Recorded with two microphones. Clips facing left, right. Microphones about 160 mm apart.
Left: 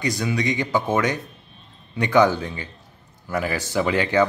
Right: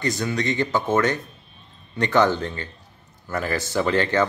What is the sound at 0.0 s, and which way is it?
A man's voice, 10° left (ahead or behind).